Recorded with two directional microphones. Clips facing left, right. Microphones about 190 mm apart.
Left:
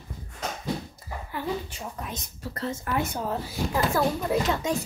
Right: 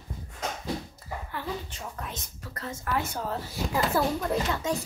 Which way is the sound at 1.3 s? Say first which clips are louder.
Left 6 dB; 10° left (ahead or behind).